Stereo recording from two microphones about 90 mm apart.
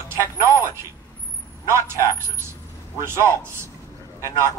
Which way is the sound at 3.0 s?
30° right (ahead or behind).